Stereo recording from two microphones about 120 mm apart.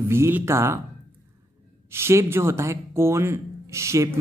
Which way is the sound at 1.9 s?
20° right (ahead or behind).